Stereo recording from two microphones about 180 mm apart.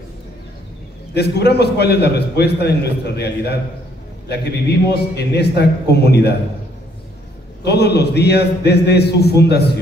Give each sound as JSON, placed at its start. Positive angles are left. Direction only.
{"t": 1.1, "sound": "a man's voice", "side_deg": 65}
{"t": 7.6, "sound": "a man's voice", "side_deg": 65}